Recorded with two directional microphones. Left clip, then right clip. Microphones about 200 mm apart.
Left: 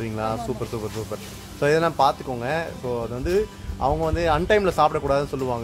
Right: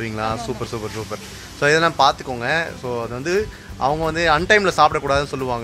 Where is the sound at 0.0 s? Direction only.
10° right (ahead or behind).